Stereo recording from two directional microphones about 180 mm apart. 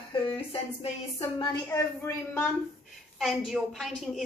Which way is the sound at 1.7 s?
10° left (ahead or behind).